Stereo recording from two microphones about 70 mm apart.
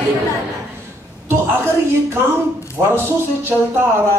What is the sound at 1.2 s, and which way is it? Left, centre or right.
Speech, right.